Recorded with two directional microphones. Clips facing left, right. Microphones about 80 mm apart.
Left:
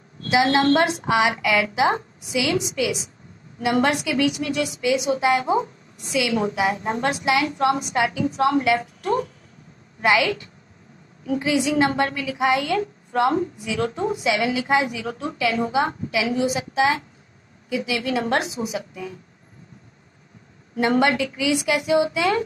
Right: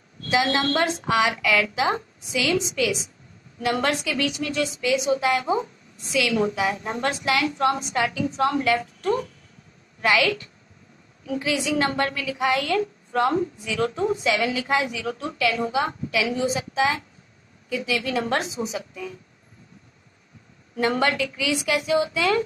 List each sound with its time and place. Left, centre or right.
0.3 s a woman's voice: centre
16.2 s a woman's voice: centre
20.7 s a woman's voice: centre